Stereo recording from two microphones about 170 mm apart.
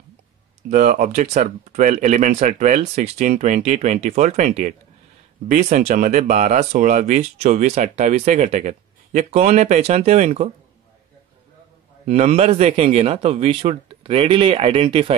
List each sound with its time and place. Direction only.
0.7 s speech: 50° right (ahead or behind)
12.1 s a man's voice: 40° right (ahead or behind)